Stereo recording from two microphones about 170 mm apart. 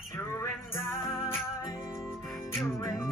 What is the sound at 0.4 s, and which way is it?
Music, 15° left (ahead or behind).